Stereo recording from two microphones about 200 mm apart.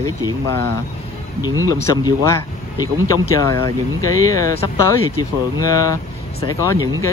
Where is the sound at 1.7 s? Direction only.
15° left (ahead or behind).